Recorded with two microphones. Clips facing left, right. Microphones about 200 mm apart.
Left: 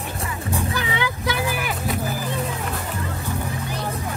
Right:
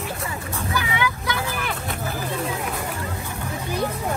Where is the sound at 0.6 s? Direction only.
25° left (ahead or behind).